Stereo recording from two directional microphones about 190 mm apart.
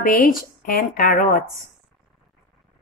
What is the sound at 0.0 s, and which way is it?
A woman's voice, 50° left (ahead or behind).